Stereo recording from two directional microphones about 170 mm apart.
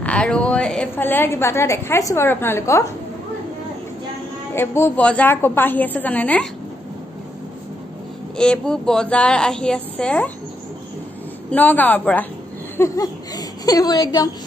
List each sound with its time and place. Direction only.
0.0 s a woman's voice: 5° left (ahead or behind)
4.6 s a woman's voice: 15° left (ahead or behind)
8.4 s a woman's voice: 5° left (ahead or behind)
11.5 s a woman's voice: 10° left (ahead or behind)